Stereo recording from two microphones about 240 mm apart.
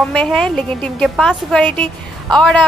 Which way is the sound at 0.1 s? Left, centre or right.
Centre.